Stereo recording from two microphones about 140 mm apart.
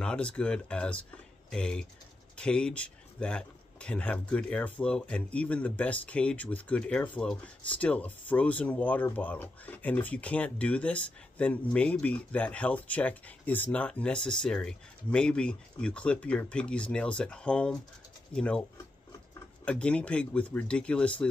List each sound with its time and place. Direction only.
0.0 s speech: 5° left (ahead or behind)
19.6 s speech: 10° left (ahead or behind)